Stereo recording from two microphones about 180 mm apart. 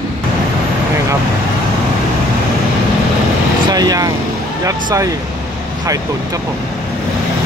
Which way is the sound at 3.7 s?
20° right (ahead or behind).